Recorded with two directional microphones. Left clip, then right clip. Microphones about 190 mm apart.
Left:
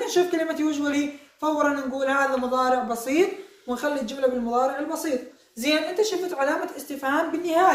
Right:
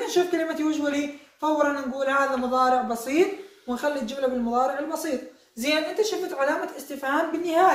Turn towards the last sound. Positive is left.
turn(degrees=25)  # may be behind; listen again after turning